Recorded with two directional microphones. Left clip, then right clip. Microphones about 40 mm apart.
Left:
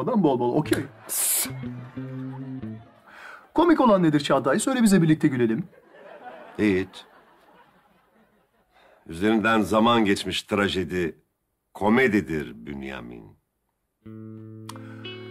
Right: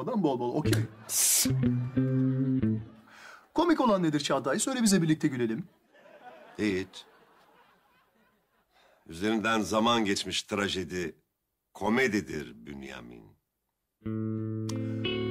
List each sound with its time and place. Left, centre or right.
0.0 s speech: right
0.8 s a sound: right
1.1 s music: centre
1.7 s music: right
3.2 s speech: right
4.8 s a sound: right
8.7 s a man's voice: right
9.8 s speech: centre
10.0 s speech: right
11.8 s speech: right
12.1 s speech: right
14.0 s music: left
14.6 s speech: right
15.0 s music: left